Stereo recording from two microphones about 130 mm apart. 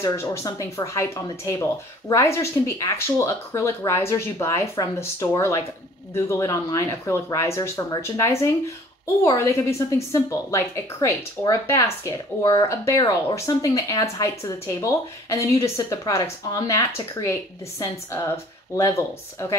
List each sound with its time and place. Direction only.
0.0 s speech: 20° left (ahead or behind)